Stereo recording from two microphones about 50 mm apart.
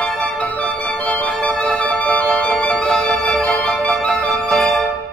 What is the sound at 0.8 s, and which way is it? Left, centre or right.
Music, centre.